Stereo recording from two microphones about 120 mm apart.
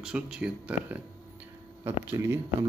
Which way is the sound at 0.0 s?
10° right (ahead or behind).